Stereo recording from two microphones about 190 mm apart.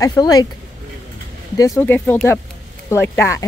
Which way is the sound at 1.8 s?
10° left (ahead or behind).